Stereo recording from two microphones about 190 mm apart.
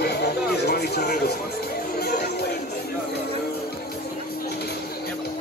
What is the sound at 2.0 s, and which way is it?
Chatter, 55° left (ahead or behind).